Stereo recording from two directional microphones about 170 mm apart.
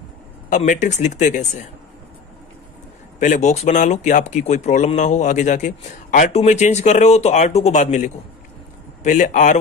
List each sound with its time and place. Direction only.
0.5 s speech: 45° left (ahead or behind)
3.2 s speech: 45° left (ahead or behind)